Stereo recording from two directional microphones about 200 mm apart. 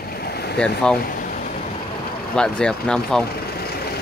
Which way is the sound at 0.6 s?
5° left (ahead or behind).